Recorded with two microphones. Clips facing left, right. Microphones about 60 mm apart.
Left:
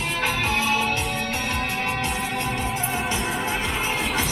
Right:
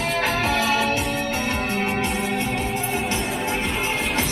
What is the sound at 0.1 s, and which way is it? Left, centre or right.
Music, centre.